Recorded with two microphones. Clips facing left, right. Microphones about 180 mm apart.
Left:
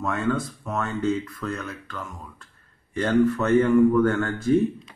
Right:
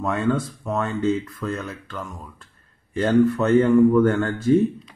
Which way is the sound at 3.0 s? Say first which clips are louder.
Right 3 dB; 20° right (ahead or behind).